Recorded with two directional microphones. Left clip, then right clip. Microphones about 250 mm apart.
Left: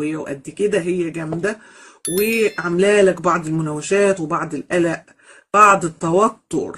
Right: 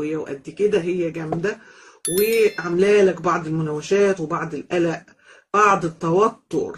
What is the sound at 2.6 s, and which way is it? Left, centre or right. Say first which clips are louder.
Speech: left 2 dB; left.